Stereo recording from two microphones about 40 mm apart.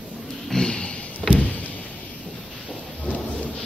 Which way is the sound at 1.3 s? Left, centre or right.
Left.